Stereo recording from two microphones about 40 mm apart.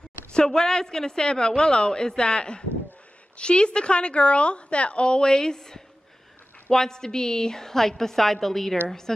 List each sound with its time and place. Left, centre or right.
0.3 s a woman's voice: centre